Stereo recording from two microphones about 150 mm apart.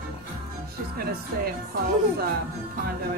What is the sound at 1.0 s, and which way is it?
Speech, 90° right.